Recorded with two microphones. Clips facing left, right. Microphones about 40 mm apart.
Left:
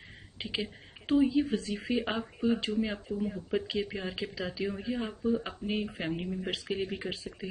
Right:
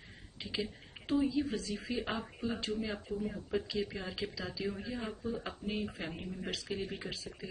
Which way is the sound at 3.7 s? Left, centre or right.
Left.